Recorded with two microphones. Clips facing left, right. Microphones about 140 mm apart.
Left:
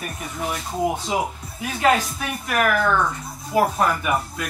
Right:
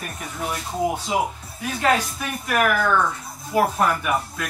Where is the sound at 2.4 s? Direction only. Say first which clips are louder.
Even; centre (ahead or behind).